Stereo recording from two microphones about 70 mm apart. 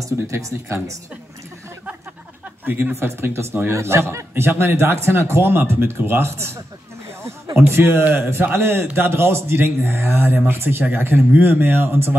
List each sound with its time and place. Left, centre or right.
0.0 s speech: right
2.6 s a man's voice: right